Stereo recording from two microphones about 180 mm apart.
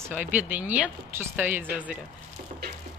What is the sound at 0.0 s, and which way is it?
Speech, 10° right (ahead or behind).